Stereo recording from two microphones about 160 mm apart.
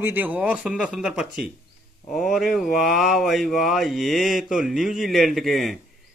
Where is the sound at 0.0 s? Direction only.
10° right (ahead or behind).